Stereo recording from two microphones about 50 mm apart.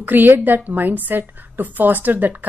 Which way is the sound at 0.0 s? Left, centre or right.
Right.